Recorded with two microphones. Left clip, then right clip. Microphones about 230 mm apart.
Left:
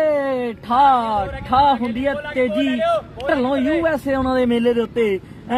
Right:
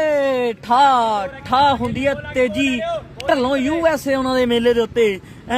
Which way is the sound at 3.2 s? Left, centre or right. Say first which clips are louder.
Right 1 dB; right.